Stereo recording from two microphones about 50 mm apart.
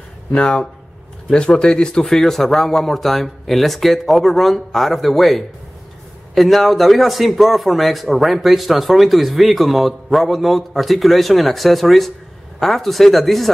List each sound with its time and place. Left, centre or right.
0.3 s speech: centre
2.0 s a man's voice: centre